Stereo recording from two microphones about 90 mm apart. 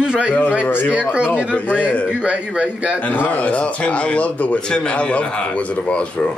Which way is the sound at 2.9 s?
20° left (ahead or behind).